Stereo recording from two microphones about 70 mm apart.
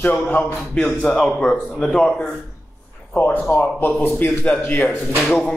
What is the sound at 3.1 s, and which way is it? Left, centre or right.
A man's voice, left.